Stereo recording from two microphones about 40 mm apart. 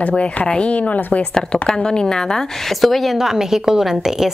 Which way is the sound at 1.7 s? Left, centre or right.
Centre.